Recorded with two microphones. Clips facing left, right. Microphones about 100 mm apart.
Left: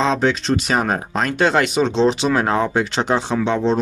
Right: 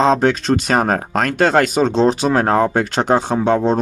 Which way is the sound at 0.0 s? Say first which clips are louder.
Right 4 dB; 45° right (ahead or behind).